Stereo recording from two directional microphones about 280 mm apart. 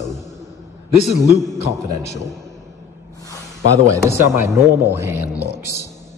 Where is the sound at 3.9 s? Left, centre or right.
Centre.